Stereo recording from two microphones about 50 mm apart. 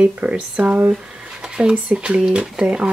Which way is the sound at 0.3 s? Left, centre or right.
Right.